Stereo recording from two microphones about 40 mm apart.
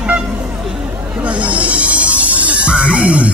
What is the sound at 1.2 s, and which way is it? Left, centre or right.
Music, right.